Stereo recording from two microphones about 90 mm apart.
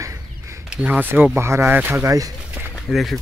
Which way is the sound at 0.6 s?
15° right (ahead or behind).